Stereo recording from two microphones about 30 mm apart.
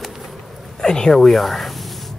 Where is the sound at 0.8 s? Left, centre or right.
Left.